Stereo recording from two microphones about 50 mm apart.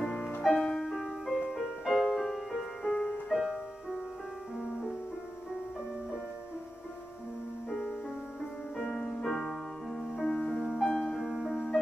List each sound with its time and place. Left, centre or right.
0.0 s music: centre
0.8 s music: centre
7.7 s music: centre
10.2 s music: centre
10.5 s music: centre
10.9 s music: centre